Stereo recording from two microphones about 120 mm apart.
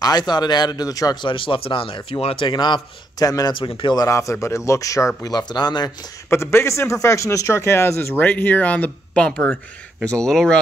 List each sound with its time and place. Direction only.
0.0 s speech: 35° left (ahead or behind)
1.3 s speech: 45° left (ahead or behind)
6.3 s speech: 20° left (ahead or behind); by 10.6 s 5° left (ahead or behind)